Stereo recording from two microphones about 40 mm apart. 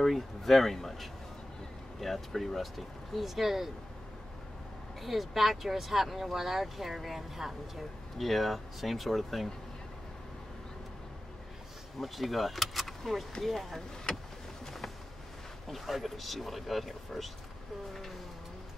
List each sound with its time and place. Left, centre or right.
0.0 s speech: centre
5.0 s speech: centre
12.0 s speech: centre
15.7 s speech: centre